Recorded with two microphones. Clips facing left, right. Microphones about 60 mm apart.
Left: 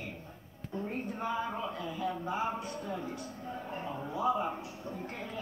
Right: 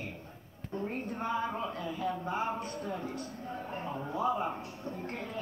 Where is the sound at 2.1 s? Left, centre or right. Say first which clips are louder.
Right 1 dB; centre.